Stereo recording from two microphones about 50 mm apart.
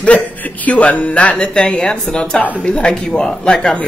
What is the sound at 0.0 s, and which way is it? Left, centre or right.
Speech, left.